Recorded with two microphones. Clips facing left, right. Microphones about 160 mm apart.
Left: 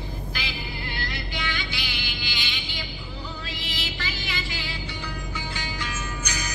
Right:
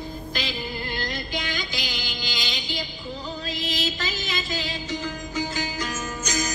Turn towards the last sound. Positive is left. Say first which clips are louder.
# right 5 dB
turn(degrees=-45)  # may be behind; listen again after turning